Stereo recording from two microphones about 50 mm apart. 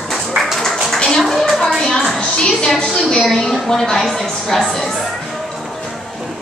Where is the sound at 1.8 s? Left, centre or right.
Centre.